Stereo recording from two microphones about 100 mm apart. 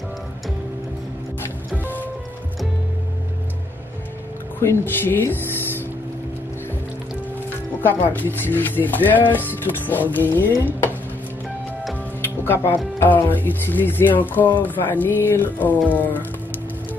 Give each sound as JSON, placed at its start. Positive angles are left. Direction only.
{"t": 4.6, "sound": "speech", "side_deg": 25}
{"t": 7.8, "sound": "speech", "side_deg": 20}
{"t": 12.2, "sound": "speech", "side_deg": 20}